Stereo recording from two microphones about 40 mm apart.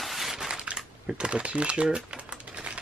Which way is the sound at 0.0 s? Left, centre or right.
Centre.